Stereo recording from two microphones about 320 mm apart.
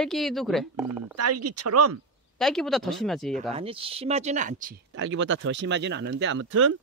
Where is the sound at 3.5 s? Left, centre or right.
Centre.